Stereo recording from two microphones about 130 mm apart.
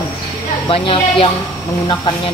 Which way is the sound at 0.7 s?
45° left (ahead or behind).